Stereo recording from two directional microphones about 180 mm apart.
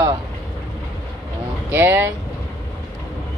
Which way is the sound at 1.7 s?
10° right (ahead or behind).